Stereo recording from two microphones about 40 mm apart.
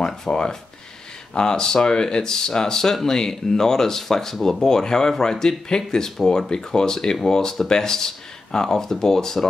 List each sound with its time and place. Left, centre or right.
0.0 s speech: centre